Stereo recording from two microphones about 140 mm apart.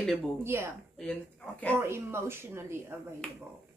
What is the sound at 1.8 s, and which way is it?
A woman's voice, 15° right (ahead or behind).